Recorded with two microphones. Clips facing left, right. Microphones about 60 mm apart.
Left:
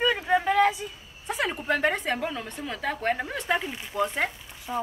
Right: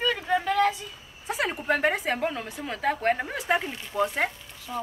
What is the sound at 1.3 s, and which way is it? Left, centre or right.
A woman's voice, centre.